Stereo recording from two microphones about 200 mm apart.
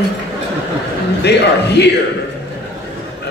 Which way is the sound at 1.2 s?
55° left (ahead or behind).